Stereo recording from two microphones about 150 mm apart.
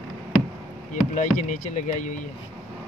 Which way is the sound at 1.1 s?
55° left (ahead or behind).